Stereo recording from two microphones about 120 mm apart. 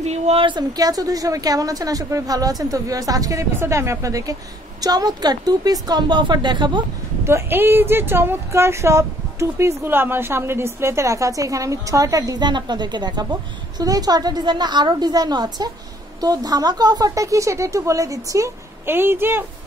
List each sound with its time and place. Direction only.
0.0 s a woman's voice: 65° right (ahead or behind)
0.4 s a woman's voice: 40° right (ahead or behind)
7.2 s speech: 20° right (ahead or behind)